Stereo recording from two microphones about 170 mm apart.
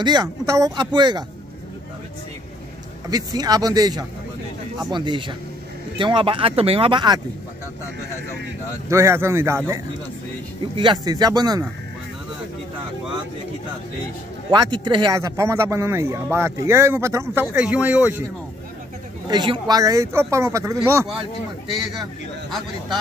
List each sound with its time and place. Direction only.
0.0 s speech: 25° right (ahead or behind)
3.1 s speech: 20° right (ahead or behind)
8.8 s speech: 15° right (ahead or behind)
10.8 s speech: 25° right (ahead or behind)
14.5 s speech: 30° right (ahead or behind); by 18.2 s 10° right (ahead or behind)
19.2 s speech: 25° right (ahead or behind)